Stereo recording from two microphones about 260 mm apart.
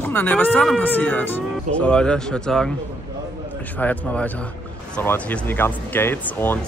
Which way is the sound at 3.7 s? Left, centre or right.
Centre.